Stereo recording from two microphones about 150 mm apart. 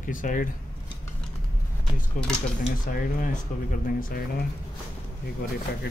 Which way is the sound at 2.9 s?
65° left (ahead or behind).